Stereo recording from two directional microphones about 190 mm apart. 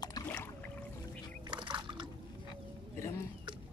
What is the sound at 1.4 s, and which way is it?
Liquid, 25° right (ahead or behind).